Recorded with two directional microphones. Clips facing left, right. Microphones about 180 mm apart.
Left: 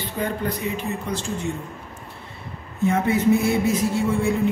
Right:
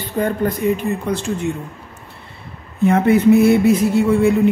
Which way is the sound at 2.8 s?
65° right (ahead or behind).